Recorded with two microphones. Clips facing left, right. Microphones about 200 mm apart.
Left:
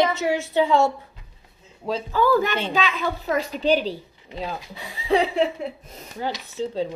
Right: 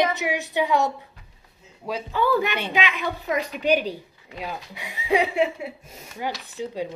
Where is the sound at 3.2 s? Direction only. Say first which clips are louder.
Left 1 dB; 35° left (ahead or behind).